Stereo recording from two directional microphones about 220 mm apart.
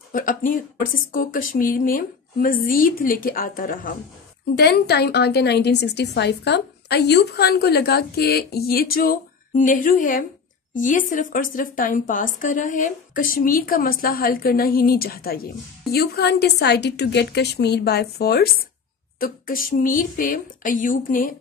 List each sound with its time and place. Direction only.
0.1 s a woman's voice: 35° left (ahead or behind)